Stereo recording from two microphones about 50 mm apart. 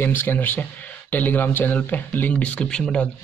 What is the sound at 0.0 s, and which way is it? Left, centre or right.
Speech, left.